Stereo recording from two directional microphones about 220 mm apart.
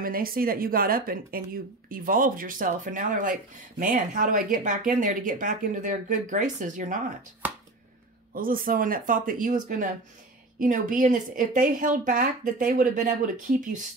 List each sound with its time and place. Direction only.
0.0 s speech: 40° right (ahead or behind)
8.3 s speech: 40° right (ahead or behind)